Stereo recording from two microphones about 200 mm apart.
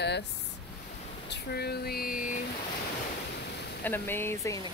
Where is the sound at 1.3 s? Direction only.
55° left (ahead or behind).